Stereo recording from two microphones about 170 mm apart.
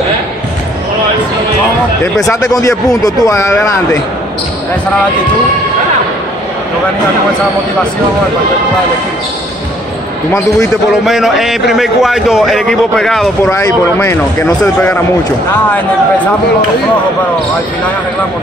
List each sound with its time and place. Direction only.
2.9 s speech: 20° left (ahead or behind)
10.9 s a man's voice: centre (ahead or behind)
13.5 s speech: 15° left (ahead or behind)